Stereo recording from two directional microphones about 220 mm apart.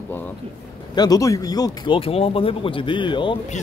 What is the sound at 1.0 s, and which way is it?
Speech, 15° left (ahead or behind).